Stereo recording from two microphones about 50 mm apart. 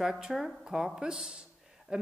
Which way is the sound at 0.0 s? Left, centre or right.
Centre.